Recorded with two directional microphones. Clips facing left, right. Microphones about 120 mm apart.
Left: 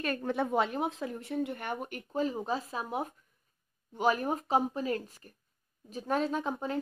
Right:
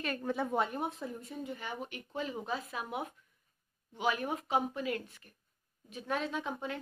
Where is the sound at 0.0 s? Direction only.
55° left (ahead or behind).